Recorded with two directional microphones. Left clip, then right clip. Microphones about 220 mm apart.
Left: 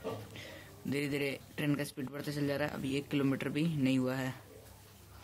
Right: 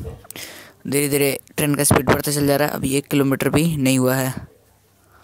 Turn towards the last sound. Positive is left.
turn(degrees=-45)  # may be behind; listen again after turning